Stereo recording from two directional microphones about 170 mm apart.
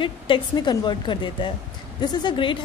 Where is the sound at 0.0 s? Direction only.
25° left (ahead or behind).